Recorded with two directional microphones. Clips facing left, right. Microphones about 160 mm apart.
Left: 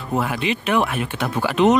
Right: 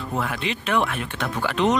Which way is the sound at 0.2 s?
10° left (ahead or behind).